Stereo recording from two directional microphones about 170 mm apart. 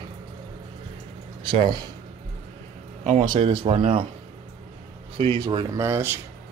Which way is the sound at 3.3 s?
25° right (ahead or behind).